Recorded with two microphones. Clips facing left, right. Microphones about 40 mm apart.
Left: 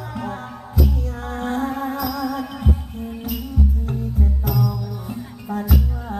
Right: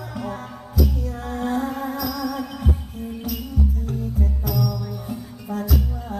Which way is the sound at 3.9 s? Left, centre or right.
Left.